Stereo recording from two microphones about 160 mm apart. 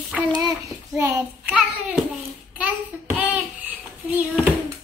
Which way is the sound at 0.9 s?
15° right (ahead or behind).